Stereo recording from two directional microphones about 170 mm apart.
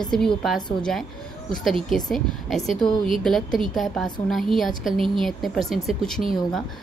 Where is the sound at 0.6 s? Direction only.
25° left (ahead or behind).